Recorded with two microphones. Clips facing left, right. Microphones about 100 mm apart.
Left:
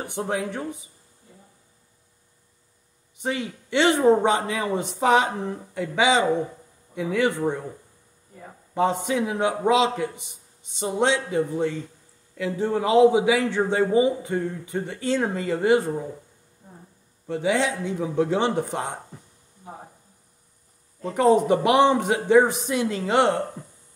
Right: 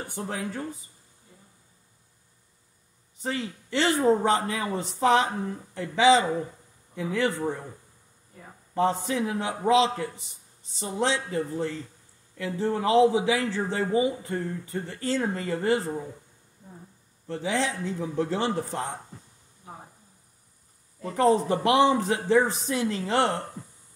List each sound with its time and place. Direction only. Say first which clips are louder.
0.0 s a man's voice: left 5 dB; 75° left (ahead or behind)
3.2 s speech: left 3 dB; 85° left
7.0 s a man's voice: left 4 dB; 65° left (ahead or behind)
8.7 s a man's voice: left 2 dB; 80° left
10.8 s a man's voice: left 4 dB; 85° left
12.4 s a man's voice: left 2 dB; 60° left (ahead or behind); by 13.8 s 80° left
13.9 s speech: left 2 dB; 25° left (ahead or behind)
14.3 s a man's voice: left 4 dB; 90° left
17.3 s a man's voice: left 5 dB; 70° left (ahead or behind)
21.0 s a man's voice: left 3 dB; 65° left (ahead or behind)